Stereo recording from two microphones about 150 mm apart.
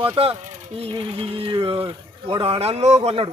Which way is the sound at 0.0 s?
40° right (ahead or behind).